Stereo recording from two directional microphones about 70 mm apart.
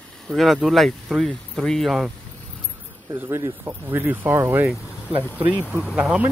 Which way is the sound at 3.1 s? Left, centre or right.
Right.